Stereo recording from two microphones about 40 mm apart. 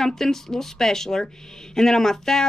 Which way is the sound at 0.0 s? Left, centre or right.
Centre.